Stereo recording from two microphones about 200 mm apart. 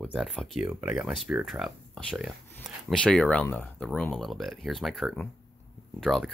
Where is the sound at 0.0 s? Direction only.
Centre (ahead or behind).